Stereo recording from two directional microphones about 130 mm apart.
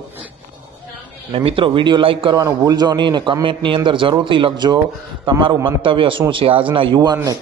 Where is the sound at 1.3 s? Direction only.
45° right (ahead or behind).